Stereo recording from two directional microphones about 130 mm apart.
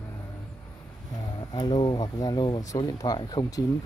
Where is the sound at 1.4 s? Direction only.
35° left (ahead or behind).